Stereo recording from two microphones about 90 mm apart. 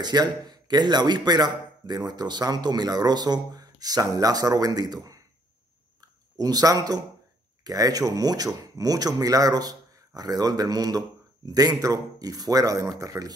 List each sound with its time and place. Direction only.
0.0 s speech: 50° right (ahead or behind)
5.9 s a sound: 45° right (ahead or behind)
7.6 s speech: 40° right (ahead or behind)